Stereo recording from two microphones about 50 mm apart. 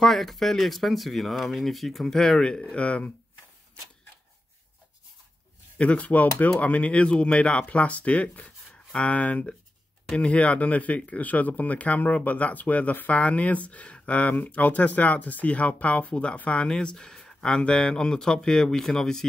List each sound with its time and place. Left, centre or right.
0.0 s speech: centre
2.7 s speech: left
5.8 s speech: left; by 19.2 s centre